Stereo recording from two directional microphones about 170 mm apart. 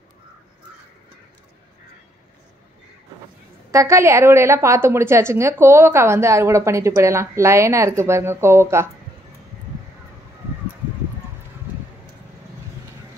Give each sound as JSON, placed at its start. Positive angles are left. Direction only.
{"t": 3.7, "sound": "a woman's voice", "side_deg": -15}